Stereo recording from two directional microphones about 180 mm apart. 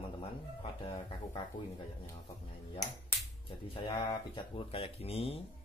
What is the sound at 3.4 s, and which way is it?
Speech, 25° left (ahead or behind).